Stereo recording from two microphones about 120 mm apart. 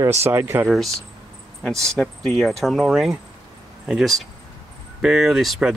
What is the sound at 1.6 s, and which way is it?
Speech, centre (ahead or behind).